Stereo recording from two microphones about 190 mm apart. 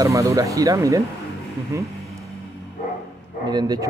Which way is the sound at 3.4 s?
20° right (ahead or behind).